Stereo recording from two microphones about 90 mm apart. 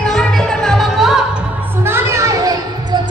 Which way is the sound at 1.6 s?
25° right (ahead or behind).